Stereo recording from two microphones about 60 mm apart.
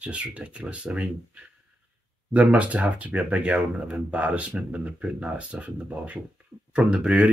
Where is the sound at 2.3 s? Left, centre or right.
Right.